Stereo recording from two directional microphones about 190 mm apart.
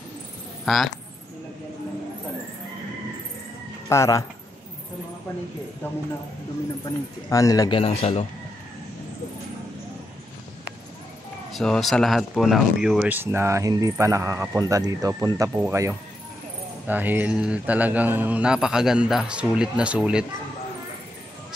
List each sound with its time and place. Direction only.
0.7 s a man's voice: centre (ahead or behind)
3.9 s speech: 15° left (ahead or behind)
6.8 s a man's voice: 15° left (ahead or behind)
7.8 s speech: 30° left (ahead or behind)
11.5 s a man's voice: centre (ahead or behind)